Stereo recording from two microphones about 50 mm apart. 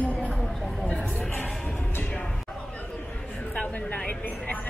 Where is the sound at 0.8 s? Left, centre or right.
Left.